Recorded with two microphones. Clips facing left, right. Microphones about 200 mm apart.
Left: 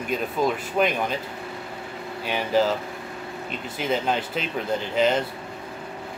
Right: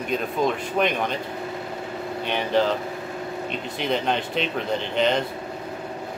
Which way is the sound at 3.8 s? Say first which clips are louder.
Even; 5° left (ahead or behind).